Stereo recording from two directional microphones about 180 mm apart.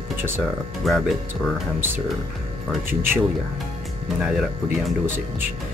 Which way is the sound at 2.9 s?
10° right (ahead or behind).